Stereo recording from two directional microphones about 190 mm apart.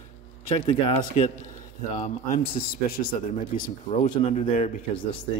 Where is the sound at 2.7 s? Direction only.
50° left (ahead or behind).